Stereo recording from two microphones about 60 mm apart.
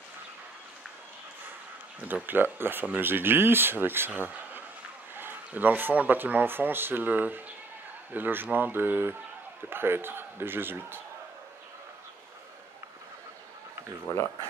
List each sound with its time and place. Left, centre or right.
2.2 s speech: right